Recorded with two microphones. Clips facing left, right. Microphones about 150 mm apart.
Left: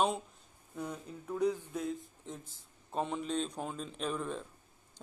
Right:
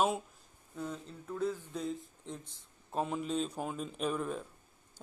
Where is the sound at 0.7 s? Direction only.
10° left (ahead or behind).